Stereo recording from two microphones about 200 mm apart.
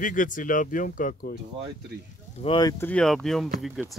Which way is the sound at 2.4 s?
25° left (ahead or behind).